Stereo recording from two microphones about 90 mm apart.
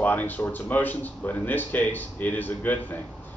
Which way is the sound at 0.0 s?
20° left (ahead or behind).